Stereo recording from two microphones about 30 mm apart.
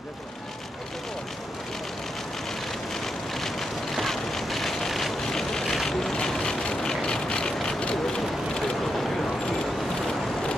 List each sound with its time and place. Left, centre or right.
2.9 s vehicle: centre
6.6 s vehicle: left
8.2 s a sound: centre